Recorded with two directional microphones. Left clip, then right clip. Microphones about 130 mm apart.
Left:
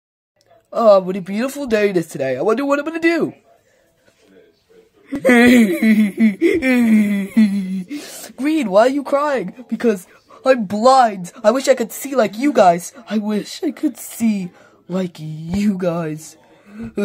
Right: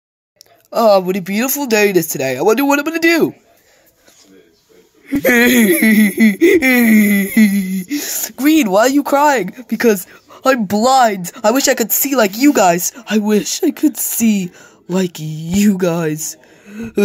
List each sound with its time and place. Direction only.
0.7 s speech: 20° right (ahead or behind)
5.0 s speech: 20° right (ahead or behind)